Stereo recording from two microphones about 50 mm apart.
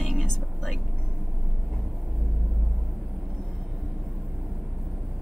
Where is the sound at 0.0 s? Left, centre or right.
Centre.